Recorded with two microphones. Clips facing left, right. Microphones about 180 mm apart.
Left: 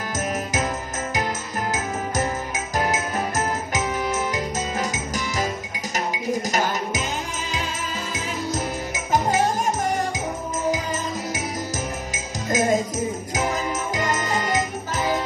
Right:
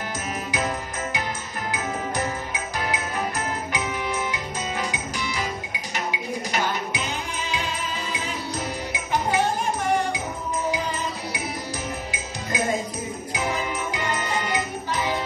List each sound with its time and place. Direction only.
1.7 s music: 45° left (ahead or behind)
8.9 s music: 40° left (ahead or behind)
12.1 s music: 45° left (ahead or behind)
13.3 s jingle bell: 45° left (ahead or behind)